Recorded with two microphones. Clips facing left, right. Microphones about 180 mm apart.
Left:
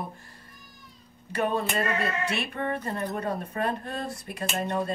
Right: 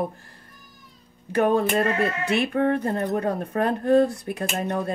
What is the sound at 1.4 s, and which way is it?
A woman's voice, 50° right (ahead or behind).